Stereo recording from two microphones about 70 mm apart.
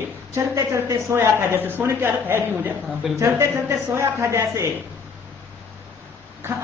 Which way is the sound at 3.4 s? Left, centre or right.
Right.